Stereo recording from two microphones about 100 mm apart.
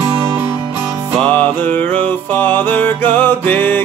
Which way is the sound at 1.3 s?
15° left (ahead or behind).